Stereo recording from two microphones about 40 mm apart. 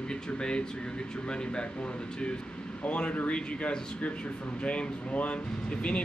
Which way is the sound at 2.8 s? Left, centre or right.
Left.